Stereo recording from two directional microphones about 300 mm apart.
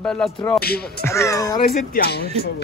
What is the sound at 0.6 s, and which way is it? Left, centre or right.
Speech, left.